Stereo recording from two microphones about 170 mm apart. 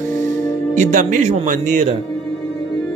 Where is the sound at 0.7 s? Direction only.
50° right (ahead or behind).